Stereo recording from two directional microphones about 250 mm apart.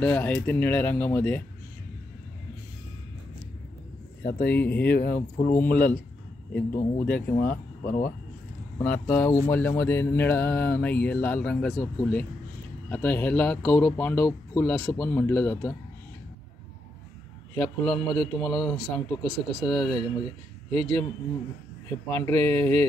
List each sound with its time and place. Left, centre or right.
0.0 s mantra: centre
4.2 s speech: left
4.6 s mantra: centre
4.8 s speech: left
8.8 s mantra: centre
17.6 s speech: centre
19.6 s mantra: centre
21.8 s mantra: centre
22.6 s mantra: right